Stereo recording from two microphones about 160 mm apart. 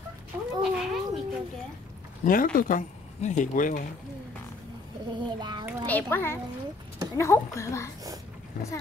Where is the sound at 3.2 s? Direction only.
50° left (ahead or behind).